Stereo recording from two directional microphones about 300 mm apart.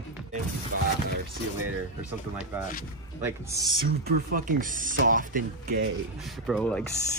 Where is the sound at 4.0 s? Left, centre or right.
Right.